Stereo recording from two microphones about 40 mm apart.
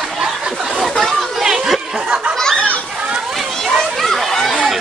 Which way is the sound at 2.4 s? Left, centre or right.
Centre.